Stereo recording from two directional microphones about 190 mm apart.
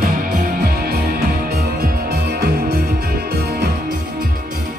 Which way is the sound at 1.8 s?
55° right (ahead or behind).